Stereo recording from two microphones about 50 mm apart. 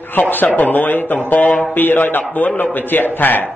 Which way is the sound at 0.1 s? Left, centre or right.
Left.